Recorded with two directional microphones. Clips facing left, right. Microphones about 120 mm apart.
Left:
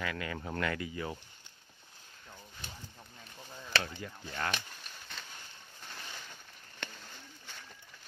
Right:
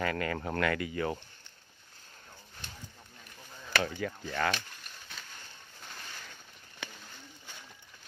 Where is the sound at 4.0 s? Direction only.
90° right.